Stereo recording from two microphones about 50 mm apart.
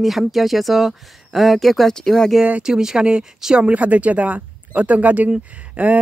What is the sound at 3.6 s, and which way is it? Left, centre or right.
Speech, right.